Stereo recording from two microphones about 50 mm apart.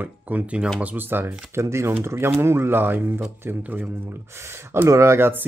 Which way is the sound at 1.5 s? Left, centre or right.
Right.